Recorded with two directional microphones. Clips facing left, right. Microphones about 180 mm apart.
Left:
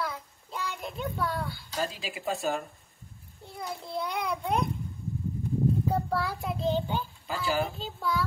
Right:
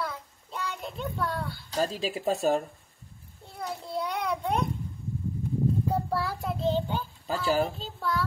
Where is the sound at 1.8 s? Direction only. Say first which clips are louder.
Right 5 dB; 35° right (ahead or behind).